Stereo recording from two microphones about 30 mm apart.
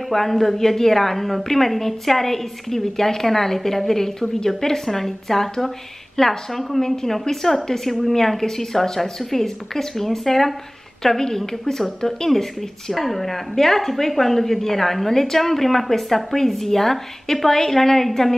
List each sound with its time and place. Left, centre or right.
0.1 s a woman's voice: centre
9.2 s a woman's voice: centre